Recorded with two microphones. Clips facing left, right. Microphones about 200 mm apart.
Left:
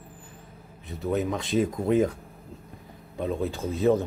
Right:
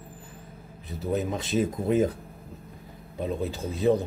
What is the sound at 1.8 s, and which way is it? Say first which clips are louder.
Speech: left 1 dB; 35° right (ahead or behind).